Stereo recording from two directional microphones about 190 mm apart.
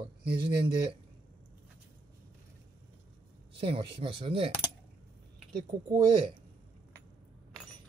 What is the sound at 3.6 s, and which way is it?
Speech, 30° right (ahead or behind).